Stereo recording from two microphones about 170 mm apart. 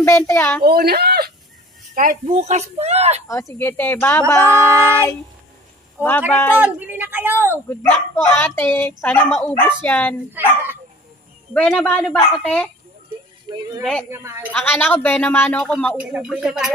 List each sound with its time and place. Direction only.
0.0 s speech: 15° left (ahead or behind)
0.7 s speech: 65° right (ahead or behind)
2.0 s speech: 50° right (ahead or behind)
3.3 s speech: 20° left (ahead or behind)
6.0 s a woman's voice: 10° right (ahead or behind)
6.3 s speech: 15° left (ahead or behind)
6.6 s a woman's voice: 10° right (ahead or behind)
7.5 s speech: 15° left (ahead or behind)
10.4 s a woman's voice: 10° right (ahead or behind)
11.5 s speech: 5° left (ahead or behind)
13.5 s a woman's voice: 20° right (ahead or behind)
14.5 s speech: 10° left (ahead or behind); by 16.7 s 5° right (ahead or behind)